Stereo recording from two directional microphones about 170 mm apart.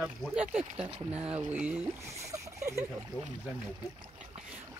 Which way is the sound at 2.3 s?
15° right (ahead or behind).